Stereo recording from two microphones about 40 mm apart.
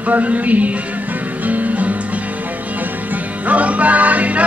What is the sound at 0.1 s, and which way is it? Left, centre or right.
Music, right.